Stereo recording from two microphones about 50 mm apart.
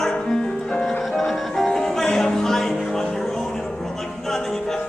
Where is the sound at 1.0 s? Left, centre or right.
Centre.